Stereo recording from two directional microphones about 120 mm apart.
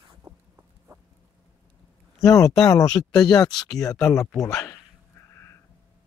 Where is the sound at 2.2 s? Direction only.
25° left (ahead or behind).